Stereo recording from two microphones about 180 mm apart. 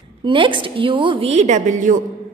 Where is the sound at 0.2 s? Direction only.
25° right (ahead or behind).